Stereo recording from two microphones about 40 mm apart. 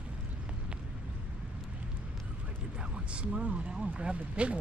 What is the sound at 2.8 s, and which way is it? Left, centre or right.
Speech, right.